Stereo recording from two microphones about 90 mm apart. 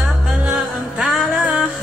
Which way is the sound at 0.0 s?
10° right (ahead or behind).